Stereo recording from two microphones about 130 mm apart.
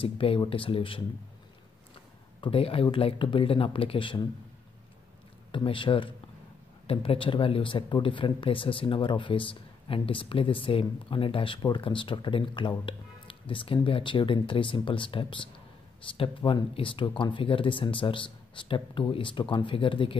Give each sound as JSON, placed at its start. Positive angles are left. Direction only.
{"t": 0.0, "sound": "speech", "side_deg": 45}
{"t": 2.4, "sound": "speech", "side_deg": 45}
{"t": 5.5, "sound": "speech", "side_deg": 40}